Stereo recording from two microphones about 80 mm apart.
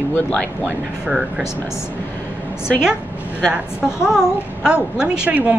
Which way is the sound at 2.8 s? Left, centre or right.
Centre.